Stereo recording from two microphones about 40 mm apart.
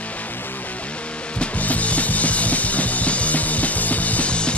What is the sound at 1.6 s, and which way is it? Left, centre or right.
Music, left.